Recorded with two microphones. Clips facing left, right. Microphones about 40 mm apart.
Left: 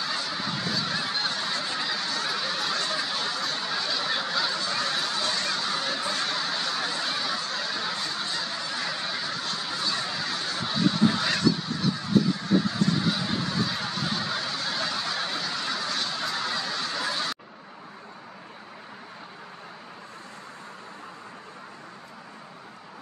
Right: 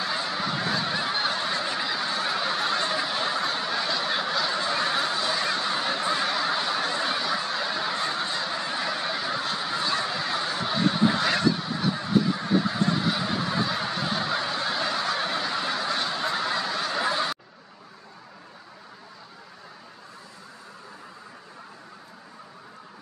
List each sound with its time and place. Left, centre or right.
0.0 s honk: centre
4.6 s honk: right
11.3 s goose: right
13.0 s fowl: centre